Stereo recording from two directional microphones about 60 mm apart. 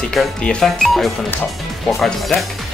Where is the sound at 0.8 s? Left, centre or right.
Centre.